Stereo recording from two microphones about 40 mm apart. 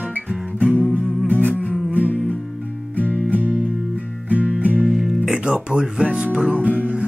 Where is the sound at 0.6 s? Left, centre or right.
Right.